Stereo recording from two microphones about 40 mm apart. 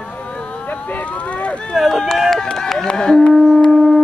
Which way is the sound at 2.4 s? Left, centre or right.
Centre.